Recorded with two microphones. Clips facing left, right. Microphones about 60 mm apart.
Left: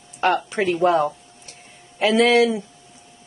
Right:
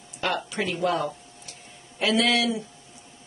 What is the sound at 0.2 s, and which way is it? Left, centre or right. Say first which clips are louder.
A woman's voice: left 7 dB; left.